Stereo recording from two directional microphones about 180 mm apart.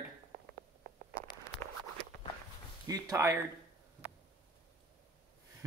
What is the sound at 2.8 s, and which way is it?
Speech, 20° right (ahead or behind).